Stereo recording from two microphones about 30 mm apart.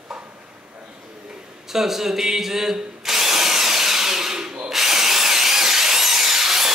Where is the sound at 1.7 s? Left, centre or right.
Centre.